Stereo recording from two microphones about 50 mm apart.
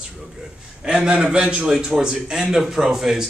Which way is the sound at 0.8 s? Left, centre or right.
Centre.